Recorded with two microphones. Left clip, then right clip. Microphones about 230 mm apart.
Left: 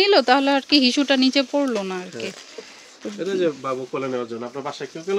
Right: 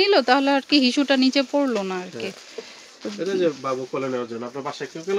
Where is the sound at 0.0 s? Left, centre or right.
Centre.